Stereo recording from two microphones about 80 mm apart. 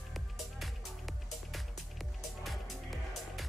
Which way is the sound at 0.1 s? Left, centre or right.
Centre.